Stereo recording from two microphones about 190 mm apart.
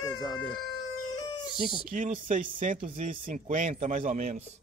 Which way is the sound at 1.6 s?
45° right (ahead or behind).